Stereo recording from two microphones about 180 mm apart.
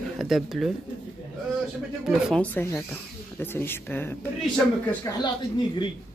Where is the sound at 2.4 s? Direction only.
10° left (ahead or behind).